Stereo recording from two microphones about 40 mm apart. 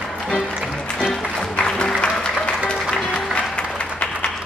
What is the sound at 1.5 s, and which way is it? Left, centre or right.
Music, left.